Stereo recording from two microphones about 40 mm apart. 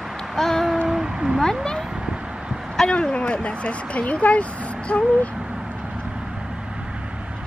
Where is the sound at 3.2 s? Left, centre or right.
Left.